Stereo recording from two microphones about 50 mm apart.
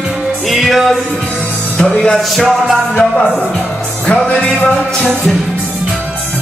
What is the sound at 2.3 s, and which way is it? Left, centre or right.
Music, centre.